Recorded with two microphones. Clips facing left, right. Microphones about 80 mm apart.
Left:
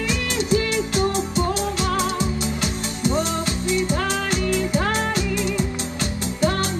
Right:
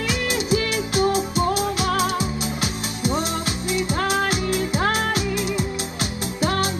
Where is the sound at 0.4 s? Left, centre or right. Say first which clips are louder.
Left 5 dB; centre.